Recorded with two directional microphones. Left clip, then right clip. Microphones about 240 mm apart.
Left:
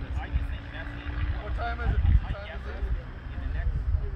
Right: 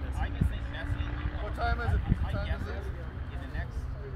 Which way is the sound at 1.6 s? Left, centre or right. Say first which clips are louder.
Right 1 dB; right.